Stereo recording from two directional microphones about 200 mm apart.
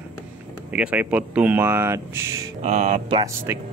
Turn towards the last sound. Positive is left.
turn(degrees=-15)  # may be behind; listen again after turning